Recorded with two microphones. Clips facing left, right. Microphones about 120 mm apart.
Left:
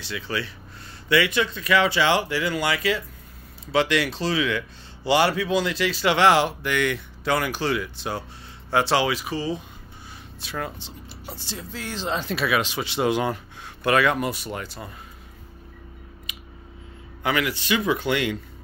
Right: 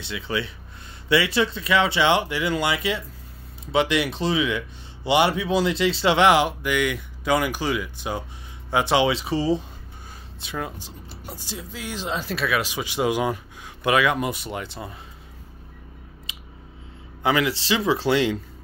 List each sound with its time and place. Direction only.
0.0 s speech: 20° right (ahead or behind)
10.4 s speech: 15° right (ahead or behind)
12.6 s speech: 15° right (ahead or behind)
17.2 s speech: 25° right (ahead or behind)